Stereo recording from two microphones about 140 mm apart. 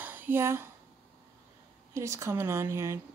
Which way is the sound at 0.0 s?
15° right (ahead or behind).